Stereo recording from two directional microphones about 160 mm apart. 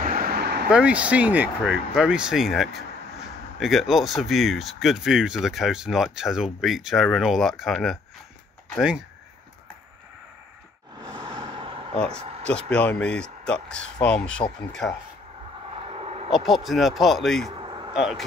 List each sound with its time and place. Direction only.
0.0 s vehicle: 70° right (ahead or behind); by 0.7 s 90° right
0.7 s speech: 5° right (ahead or behind)
11.0 s vehicle: 30° right (ahead or behind)
12.4 s speech: 5° left (ahead or behind)
15.9 s a sound: 40° right (ahead or behind)
16.3 s speech: centre (ahead or behind)
17.5 s a sound: 30° right (ahead or behind)
17.9 s speech: 5° right (ahead or behind)